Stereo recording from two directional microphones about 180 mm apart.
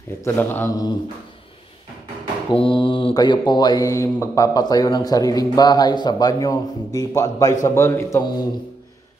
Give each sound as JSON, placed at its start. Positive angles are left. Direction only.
{"t": 0.2, "sound": "speech", "side_deg": 10}
{"t": 2.5, "sound": "mantra", "side_deg": 30}
{"t": 7.6, "sound": "speech", "side_deg": 15}